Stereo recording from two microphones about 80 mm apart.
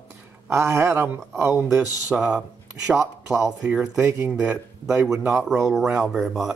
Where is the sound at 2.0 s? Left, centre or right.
Centre.